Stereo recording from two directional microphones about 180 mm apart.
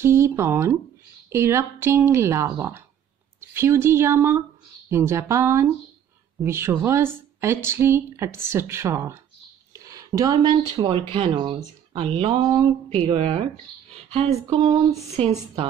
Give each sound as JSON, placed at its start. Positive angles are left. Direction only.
{"t": 0.0, "sound": "speech", "side_deg": -15}